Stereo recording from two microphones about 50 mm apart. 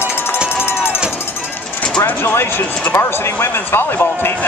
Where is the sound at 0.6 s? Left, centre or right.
Left.